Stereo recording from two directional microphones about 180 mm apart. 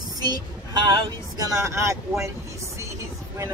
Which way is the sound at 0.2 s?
25° right (ahead or behind).